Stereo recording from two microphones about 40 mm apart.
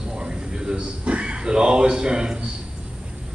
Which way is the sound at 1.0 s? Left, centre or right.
Right.